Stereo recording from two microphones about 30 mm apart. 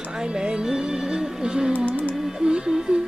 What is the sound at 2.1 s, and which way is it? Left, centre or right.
Music, centre.